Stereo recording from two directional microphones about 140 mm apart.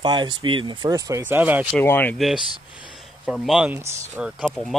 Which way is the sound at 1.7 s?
15° left (ahead or behind).